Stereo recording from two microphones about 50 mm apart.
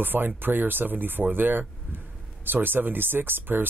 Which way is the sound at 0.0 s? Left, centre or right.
Right.